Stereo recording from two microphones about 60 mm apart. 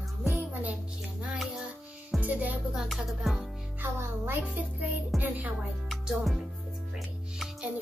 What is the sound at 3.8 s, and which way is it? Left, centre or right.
Music, right.